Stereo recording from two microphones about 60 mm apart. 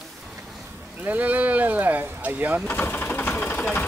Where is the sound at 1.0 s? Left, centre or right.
Right.